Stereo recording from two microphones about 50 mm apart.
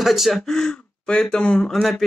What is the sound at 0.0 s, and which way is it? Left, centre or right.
Speech, centre.